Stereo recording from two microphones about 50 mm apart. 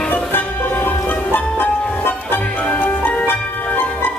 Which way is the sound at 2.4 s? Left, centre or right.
Left.